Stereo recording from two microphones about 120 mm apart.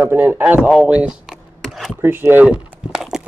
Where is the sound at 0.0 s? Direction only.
15° right (ahead or behind).